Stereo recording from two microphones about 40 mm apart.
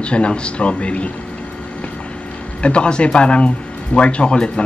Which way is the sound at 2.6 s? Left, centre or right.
Left.